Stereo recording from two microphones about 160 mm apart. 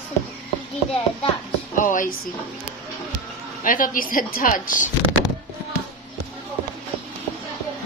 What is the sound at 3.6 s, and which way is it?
A woman's voice, 60° left (ahead or behind).